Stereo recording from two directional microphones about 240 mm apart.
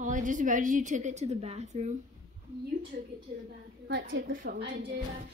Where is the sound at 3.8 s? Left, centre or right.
Right.